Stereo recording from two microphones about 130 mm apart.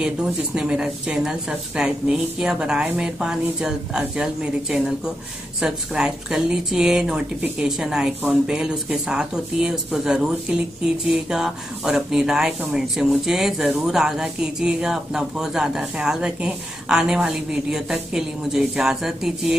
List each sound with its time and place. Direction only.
0.0 s speech: 5° right (ahead or behind)